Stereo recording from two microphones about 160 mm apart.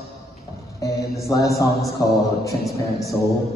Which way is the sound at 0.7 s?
20° left (ahead or behind).